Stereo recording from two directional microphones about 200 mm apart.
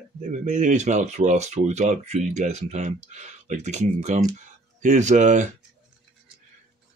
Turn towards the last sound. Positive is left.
turn(degrees=-35)  # may be behind; listen again after turning